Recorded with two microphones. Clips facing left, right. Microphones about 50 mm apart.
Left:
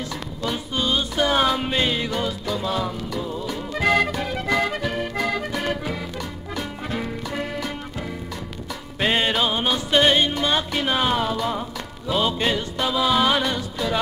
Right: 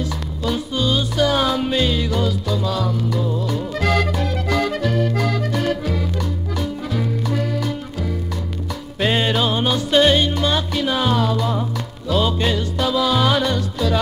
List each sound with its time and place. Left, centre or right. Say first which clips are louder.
0.5 s music: right 3 dB; left
3.2 s music: right 5 dB; centre
4.2 s accordion: right 2 dB; centre
7.0 s music: right 6 dB; left
9.0 s music: right 2 dB; centre